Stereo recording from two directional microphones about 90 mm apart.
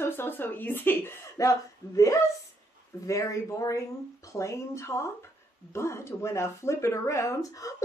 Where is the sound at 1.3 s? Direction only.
35° left (ahead or behind).